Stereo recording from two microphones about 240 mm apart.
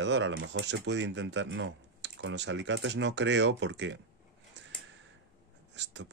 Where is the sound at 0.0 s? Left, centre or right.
Right.